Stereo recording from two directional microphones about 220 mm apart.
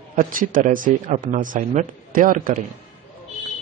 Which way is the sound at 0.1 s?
35° right (ahead or behind).